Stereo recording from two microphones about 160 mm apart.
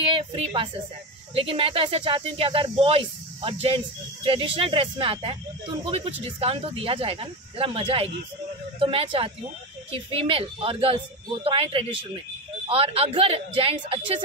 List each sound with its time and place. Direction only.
0.1 s speech: 35° right (ahead or behind)